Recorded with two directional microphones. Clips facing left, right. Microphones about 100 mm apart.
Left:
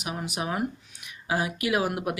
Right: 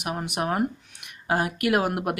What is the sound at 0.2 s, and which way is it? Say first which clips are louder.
Speech: right 4 dB; 55° right (ahead or behind).